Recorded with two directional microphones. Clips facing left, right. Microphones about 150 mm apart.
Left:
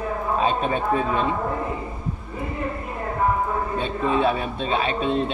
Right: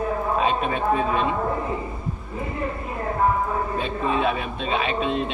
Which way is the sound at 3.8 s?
30° left (ahead or behind).